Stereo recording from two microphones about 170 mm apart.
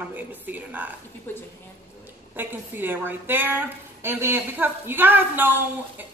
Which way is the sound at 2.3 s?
10° right (ahead or behind).